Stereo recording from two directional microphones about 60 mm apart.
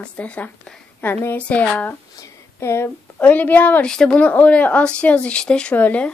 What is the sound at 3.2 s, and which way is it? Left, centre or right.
Speech, left.